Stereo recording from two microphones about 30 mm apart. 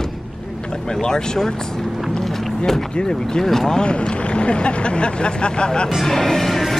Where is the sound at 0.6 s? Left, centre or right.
Left.